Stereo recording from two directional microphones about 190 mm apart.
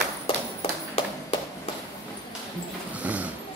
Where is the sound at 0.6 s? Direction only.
35° left (ahead or behind).